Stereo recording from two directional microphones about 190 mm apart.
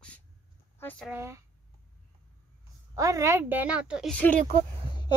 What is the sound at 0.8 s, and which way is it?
Speech, 10° left (ahead or behind).